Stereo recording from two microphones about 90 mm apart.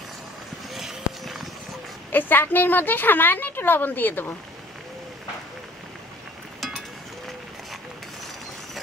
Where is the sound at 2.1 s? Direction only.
20° left (ahead or behind).